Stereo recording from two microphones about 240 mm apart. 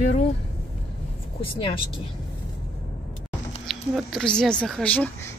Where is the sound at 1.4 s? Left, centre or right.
Left.